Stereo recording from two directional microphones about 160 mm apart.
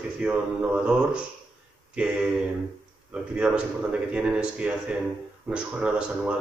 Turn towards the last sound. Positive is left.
turn(degrees=-5)  # may be behind; listen again after turning